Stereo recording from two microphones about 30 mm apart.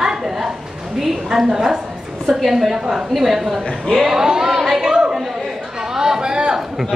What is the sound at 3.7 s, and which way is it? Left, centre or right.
Speech, centre.